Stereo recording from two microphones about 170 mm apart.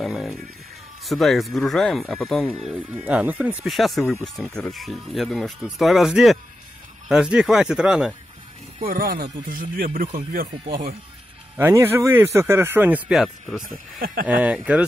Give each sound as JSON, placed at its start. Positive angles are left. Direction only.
{"t": 0.0, "sound": "music", "side_deg": 0}
{"t": 1.0, "sound": "speech", "side_deg": 0}
{"t": 3.1, "sound": "speech", "side_deg": -10}
{"t": 4.0, "sound": "speech", "side_deg": 15}
{"t": 4.6, "sound": "speech", "side_deg": 0}
{"t": 8.7, "sound": "speech", "side_deg": -55}
{"t": 11.5, "sound": "speech", "side_deg": -15}
{"t": 13.9, "sound": "speech", "side_deg": -60}
{"t": 14.2, "sound": "speech", "side_deg": -10}